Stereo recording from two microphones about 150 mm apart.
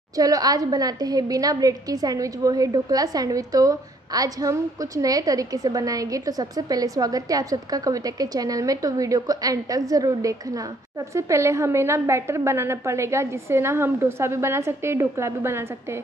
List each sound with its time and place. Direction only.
0.2 s a woman's voice: 25° right (ahead or behind)